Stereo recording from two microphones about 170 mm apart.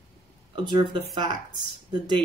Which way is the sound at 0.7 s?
25° right (ahead or behind).